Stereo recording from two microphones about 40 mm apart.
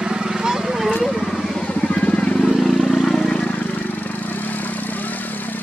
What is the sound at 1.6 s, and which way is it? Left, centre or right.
Vehicle, left.